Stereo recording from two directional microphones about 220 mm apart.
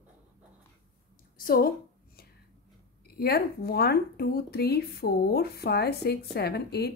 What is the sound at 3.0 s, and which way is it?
Speech, 45° left (ahead or behind).